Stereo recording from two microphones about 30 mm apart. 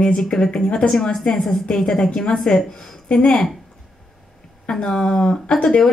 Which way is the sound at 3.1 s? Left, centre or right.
Left.